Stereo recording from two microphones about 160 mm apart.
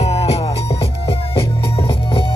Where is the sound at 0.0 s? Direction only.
40° left (ahead or behind).